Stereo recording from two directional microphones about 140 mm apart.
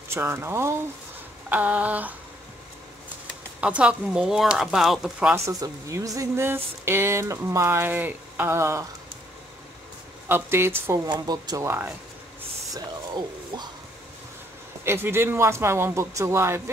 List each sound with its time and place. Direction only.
0.1 s speech: 15° right (ahead or behind)
3.6 s speech: 5° right (ahead or behind)
5.3 s speech: 25° right (ahead or behind)
10.2 s speech: 15° right (ahead or behind)
11.1 s speech: 30° right (ahead or behind)
12.7 s speech: 30° right (ahead or behind)
14.9 s speech: 15° right (ahead or behind)